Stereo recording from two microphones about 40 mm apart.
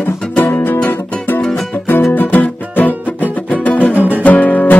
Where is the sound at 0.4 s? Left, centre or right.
Left.